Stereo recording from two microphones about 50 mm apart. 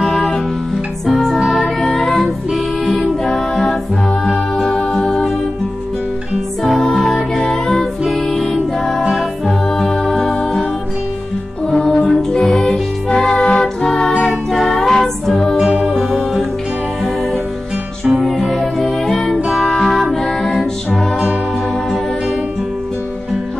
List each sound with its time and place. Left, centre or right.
0.0 s music: centre
1.8 s music: centre
6.8 s music: centre
11.9 s music: centre
15.5 s music: centre
15.9 s music: centre
18.2 s music: centre